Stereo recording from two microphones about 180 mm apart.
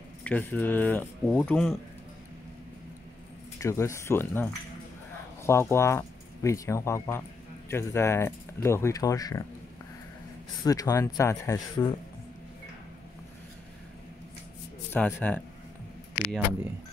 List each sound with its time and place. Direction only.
0.2 s speech: 10° left (ahead or behind)
3.5 s speech: 15° left (ahead or behind)
10.6 s speech: 20° left (ahead or behind)
14.9 s speech: 10° left (ahead or behind)